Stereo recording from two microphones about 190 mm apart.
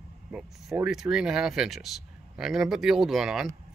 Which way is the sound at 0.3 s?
5° right (ahead or behind).